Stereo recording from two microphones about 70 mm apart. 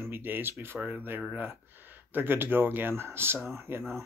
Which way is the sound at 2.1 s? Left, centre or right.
Right.